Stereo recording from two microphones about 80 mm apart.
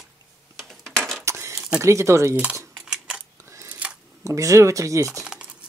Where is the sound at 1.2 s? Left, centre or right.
Right.